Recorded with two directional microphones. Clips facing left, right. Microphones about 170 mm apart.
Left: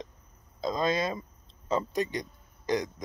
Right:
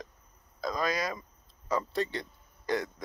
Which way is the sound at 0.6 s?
25° left (ahead or behind).